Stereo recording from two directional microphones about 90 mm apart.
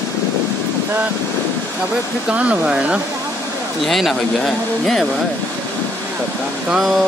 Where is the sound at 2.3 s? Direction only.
15° right (ahead or behind).